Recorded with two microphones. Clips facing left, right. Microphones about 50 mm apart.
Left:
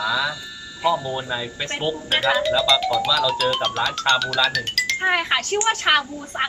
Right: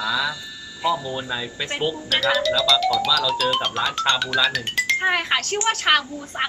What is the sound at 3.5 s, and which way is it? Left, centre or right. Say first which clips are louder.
Speech: even; right.